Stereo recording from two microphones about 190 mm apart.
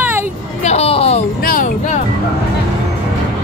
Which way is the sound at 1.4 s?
45° left (ahead or behind).